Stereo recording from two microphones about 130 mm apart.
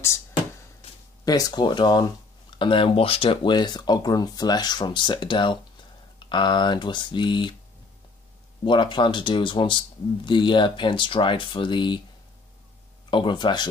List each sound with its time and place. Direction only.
1.2 s speech: 30° left (ahead or behind)
8.6 s speech: 35° left (ahead or behind)
13.1 s speech: 35° left (ahead or behind)